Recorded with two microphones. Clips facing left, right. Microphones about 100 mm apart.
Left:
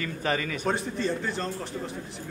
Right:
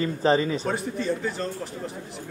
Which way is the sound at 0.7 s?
5° right (ahead or behind).